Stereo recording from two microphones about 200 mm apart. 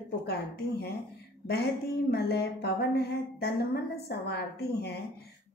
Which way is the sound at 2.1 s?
55° left (ahead or behind).